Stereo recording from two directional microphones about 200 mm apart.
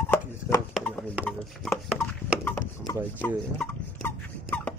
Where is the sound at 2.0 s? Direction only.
10° left (ahead or behind).